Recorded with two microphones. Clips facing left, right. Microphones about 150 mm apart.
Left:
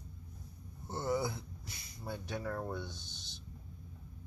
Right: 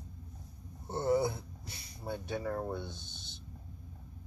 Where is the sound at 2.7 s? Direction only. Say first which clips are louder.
Right 2 dB; 55° right (ahead or behind).